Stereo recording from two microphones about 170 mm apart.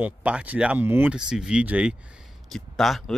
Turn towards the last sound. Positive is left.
turn(degrees=0)  # may be behind; listen again after turning